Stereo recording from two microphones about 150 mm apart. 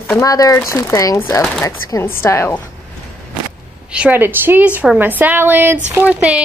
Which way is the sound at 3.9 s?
10° right (ahead or behind).